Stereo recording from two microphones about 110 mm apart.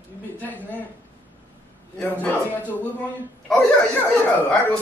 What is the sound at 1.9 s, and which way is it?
Speech, 15° left (ahead or behind).